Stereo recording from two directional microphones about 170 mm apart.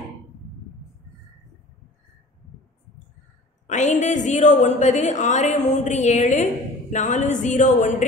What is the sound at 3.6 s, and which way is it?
A woman's voice, 45° left (ahead or behind).